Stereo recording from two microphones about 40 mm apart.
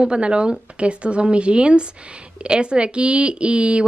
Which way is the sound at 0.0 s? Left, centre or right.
Right.